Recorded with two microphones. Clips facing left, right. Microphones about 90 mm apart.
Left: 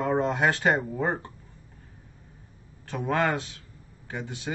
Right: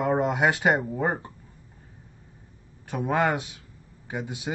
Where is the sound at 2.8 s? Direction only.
15° right (ahead or behind).